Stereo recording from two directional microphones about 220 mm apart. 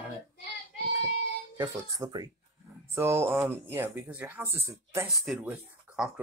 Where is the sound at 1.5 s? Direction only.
15° right (ahead or behind).